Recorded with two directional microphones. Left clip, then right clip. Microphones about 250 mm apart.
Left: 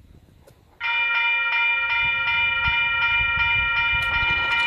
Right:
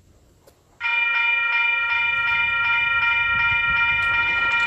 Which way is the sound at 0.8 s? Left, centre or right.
Left.